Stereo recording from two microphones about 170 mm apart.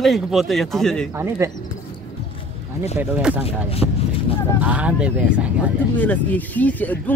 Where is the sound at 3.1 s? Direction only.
10° right (ahead or behind).